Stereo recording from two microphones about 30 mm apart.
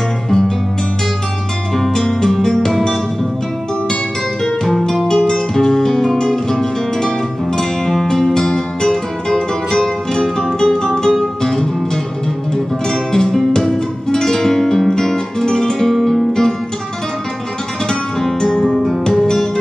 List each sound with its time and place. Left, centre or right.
2.0 s music: centre
5.0 s music: left
13.1 s music: centre
14.9 s guitar: centre
15.9 s music: centre
17.8 s music: centre